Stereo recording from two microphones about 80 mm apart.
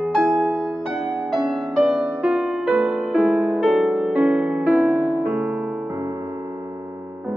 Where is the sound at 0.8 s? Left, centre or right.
Centre.